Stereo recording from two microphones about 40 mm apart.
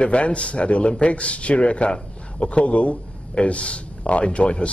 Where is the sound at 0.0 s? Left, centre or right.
Left.